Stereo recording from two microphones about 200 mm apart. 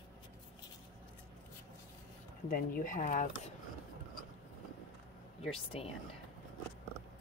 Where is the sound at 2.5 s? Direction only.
45° left (ahead or behind).